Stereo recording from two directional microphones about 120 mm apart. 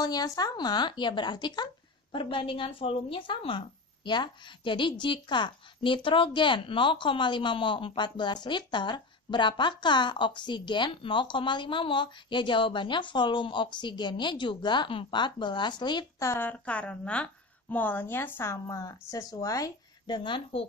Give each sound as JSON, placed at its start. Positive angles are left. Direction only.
{"t": 0.0, "sound": "a woman's voice", "side_deg": 30}
{"t": 16.2, "sound": "a woman's voice", "side_deg": 20}
{"t": 20.2, "sound": "speech", "side_deg": 45}